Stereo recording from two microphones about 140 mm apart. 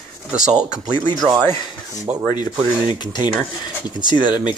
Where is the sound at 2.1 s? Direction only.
10° right (ahead or behind).